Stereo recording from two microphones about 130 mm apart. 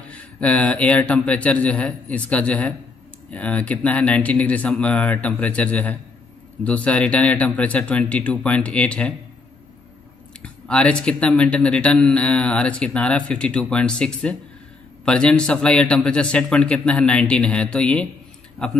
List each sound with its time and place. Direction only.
0.1 s speech: 10° left (ahead or behind)
10.4 s a man's voice: 10° left (ahead or behind)